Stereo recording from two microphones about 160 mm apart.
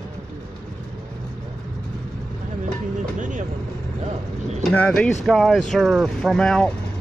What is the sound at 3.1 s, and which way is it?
Vehicle, 50° right (ahead or behind).